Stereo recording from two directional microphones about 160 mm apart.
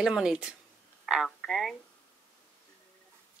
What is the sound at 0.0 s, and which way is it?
A woman's voice, 5° right (ahead or behind).